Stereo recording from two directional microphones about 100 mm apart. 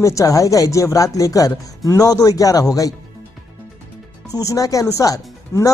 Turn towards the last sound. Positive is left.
turn(degrees=35)  # may be behind; listen again after turning